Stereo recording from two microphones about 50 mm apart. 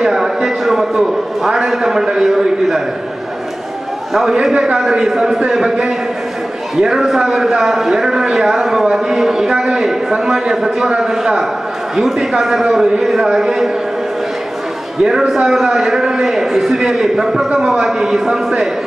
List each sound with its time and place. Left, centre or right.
0.0 s a man's voice: centre
4.1 s a man's voice: centre
15.2 s a man's voice: centre